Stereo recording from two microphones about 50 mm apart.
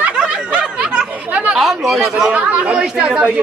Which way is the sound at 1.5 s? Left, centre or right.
Centre.